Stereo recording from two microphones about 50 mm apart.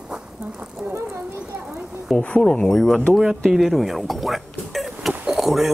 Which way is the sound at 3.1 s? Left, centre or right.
Centre.